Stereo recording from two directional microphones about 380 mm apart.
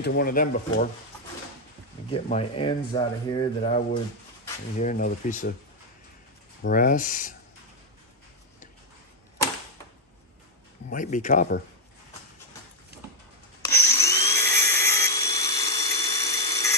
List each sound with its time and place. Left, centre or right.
0.0 s speech: left
2.0 s speech: centre
6.6 s speech: left
10.9 s speech: centre
13.8 s helicopter: centre